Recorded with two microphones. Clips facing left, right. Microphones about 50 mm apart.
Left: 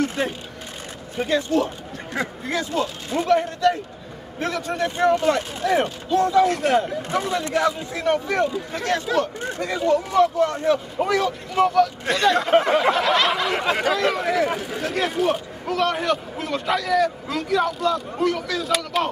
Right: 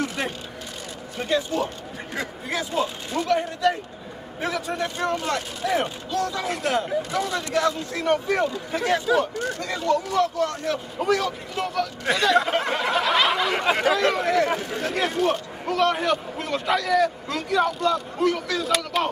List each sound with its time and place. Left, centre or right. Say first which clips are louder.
1.3 s speech: left 3 dB; centre
5.0 s speech: left 8 dB; centre
5.6 s speech: even; centre
6.0 s speech: left 8 dB; left
6.4 s speech: left 6 dB; centre
7.0 s speech: left 1 dB; left
7.4 s speech: left 1 dB; centre
8.0 s speech: left 1 dB; centre
9.4 s speech: left 3 dB; left; by 19.0 s centre